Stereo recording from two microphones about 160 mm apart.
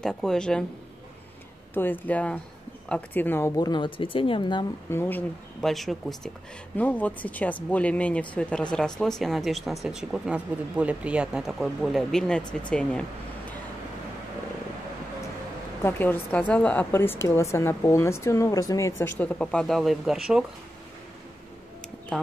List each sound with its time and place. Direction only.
0.0 s speech: 5° left (ahead or behind)
1.7 s a woman's voice: 10° left (ahead or behind); by 4.6 s 30° left (ahead or behind)
4.9 s a woman's voice: 10° left (ahead or behind)
5.6 s a woman's voice: centre (ahead or behind)
15.8 s a woman's voice: 10° left (ahead or behind); by 20.4 s 5° right (ahead or behind)
22.1 s speech: 5° left (ahead or behind)